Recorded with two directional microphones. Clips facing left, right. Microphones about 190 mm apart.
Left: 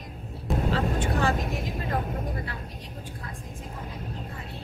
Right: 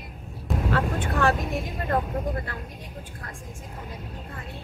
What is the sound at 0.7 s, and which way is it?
Vehicle, 55° right (ahead or behind).